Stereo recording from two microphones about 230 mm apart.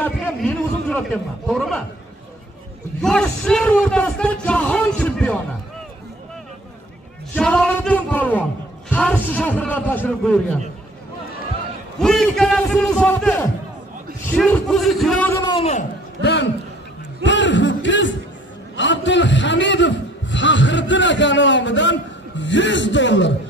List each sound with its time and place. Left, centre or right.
0.0 s a man's voice: centre
3.0 s a man's voice: centre
7.3 s a sound: centre
8.9 s a man's voice: centre
12.0 s a man's voice: centre; by 15.8 s left
16.2 s a man's voice: left
17.2 s a sound: left
18.8 s a man's voice: left